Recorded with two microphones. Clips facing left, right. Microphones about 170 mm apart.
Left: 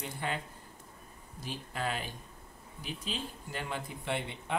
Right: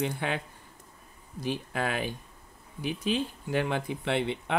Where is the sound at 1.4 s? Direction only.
70° right (ahead or behind).